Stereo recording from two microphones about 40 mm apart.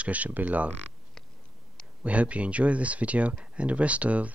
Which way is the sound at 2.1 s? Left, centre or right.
Right.